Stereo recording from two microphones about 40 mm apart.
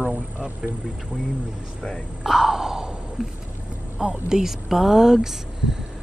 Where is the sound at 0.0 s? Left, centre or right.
Right.